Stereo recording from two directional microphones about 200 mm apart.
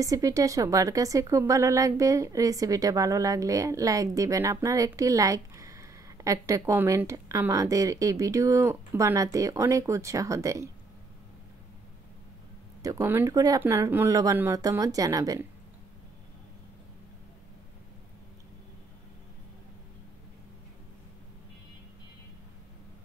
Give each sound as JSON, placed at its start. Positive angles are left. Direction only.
{"t": 0.0, "sound": "a woman's voice", "side_deg": -15}
{"t": 12.8, "sound": "a woman's voice", "side_deg": -15}